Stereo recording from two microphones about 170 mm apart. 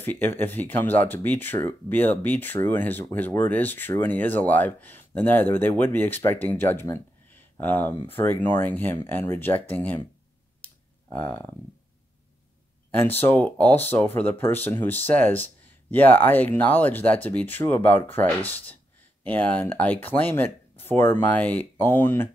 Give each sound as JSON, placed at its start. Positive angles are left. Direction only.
{"t": 0.0, "sound": "speech", "side_deg": 10}
{"t": 11.1, "sound": "speech", "side_deg": 10}
{"t": 13.0, "sound": "speech", "side_deg": 10}